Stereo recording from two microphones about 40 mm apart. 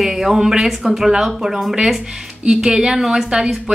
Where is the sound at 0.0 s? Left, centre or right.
Centre.